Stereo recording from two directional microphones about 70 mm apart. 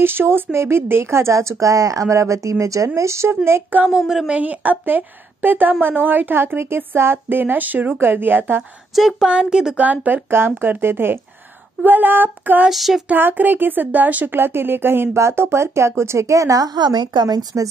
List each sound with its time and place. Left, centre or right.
0.0 s speech: right
3.7 s a woman's voice: right
8.9 s speech: centre
9.8 s a woman's voice: right
12.6 s speech: centre
13.1 s speech: right